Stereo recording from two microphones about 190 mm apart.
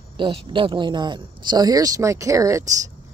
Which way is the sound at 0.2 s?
25° right (ahead or behind).